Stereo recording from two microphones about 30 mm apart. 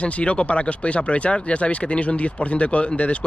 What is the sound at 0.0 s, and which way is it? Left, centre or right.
Speech, left.